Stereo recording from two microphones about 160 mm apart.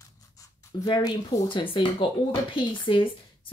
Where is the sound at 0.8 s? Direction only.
25° left (ahead or behind).